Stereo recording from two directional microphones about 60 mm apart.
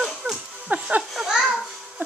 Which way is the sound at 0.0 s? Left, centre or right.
Centre.